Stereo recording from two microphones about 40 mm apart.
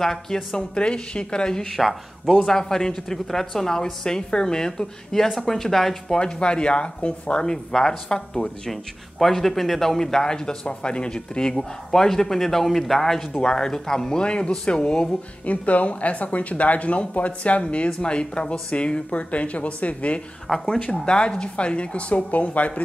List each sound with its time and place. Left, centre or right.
0.0 s a man's voice: centre
0.7 s speech: left
1.7 s speech: centre
2.3 s a man's voice: centre
6.1 s speech: left
7.5 s a man's voice: centre
9.2 s a man's voice: centre
13.4 s speech: centre
15.4 s speech: left
20.4 s a man's voice: centre
21.0 s speech: left